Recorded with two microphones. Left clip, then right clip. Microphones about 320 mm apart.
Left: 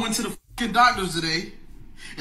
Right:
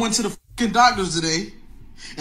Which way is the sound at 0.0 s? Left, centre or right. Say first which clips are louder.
Right 4 dB; centre.